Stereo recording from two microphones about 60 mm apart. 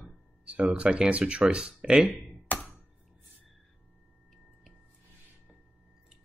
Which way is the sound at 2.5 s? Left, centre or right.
Left.